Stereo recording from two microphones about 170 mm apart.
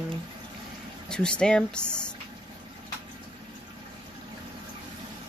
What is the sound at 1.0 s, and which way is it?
Speech, 5° left (ahead or behind).